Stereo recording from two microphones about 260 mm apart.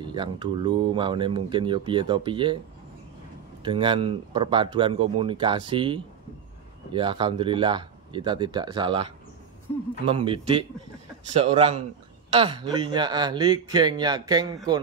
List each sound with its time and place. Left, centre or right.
0.0 s speech: centre
3.6 s speech: centre
9.7 s a man's voice: centre
10.0 s speech: centre